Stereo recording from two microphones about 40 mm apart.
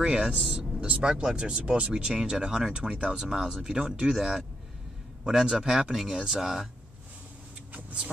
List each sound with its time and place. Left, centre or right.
0.0 s speech: right; by 6.7 s centre
7.7 s vehicle: right